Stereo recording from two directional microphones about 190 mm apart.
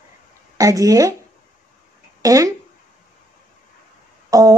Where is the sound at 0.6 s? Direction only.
20° right (ahead or behind).